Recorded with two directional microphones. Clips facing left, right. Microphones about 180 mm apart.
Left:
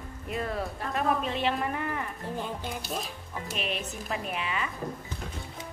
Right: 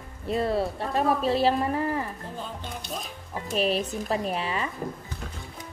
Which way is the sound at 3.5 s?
35° right (ahead or behind).